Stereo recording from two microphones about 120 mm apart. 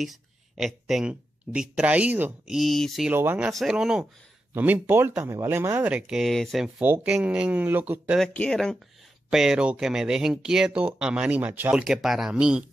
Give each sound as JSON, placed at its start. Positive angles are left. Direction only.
{"t": 0.0, "sound": "speech", "side_deg": 0}
{"t": 2.5, "sound": "speech", "side_deg": 0}
{"t": 3.1, "sound": "speech", "side_deg": -15}
{"t": 3.4, "sound": "speech", "side_deg": -5}
{"t": 6.8, "sound": "speech", "side_deg": -15}
{"t": 8.2, "sound": "speech", "side_deg": 5}
{"t": 11.8, "sound": "speech", "side_deg": -5}